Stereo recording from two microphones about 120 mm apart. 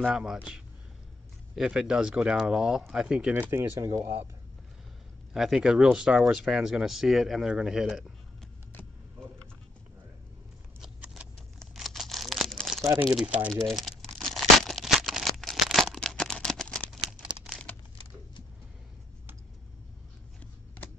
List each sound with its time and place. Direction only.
0.0 s speech: 5° right (ahead or behind)
3.5 s speech: 20° right (ahead or behind)
5.3 s speech: 5° right (ahead or behind)
10.8 s vehicle: 10° right (ahead or behind)
11.6 s tearing: centre (ahead or behind)
13.0 s speech: 5° right (ahead or behind)
13.5 s tearing: 5° left (ahead or behind)
17.2 s crumpling: 10° right (ahead or behind)